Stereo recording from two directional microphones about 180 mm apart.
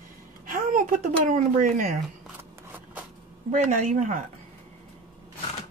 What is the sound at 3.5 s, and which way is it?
Speech, 45° right (ahead or behind).